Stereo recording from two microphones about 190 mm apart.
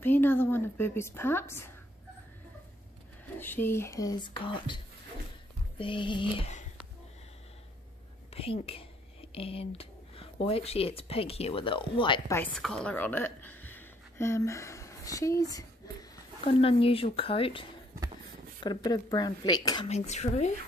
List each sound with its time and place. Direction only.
0.0 s a woman's voice: 10° left (ahead or behind)
3.3 s speech: 10° left (ahead or behind); by 6.5 s 25° left (ahead or behind)
8.3 s speech: 30° left (ahead or behind)
12.5 s a woman's voice: 5° left (ahead or behind)
16.6 s speech: 30° left (ahead or behind)
19.9 s speech: 35° left (ahead or behind)